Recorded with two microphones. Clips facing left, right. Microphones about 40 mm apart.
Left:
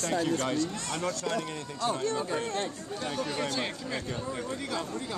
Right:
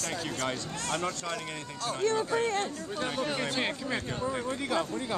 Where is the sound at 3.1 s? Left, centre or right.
Right.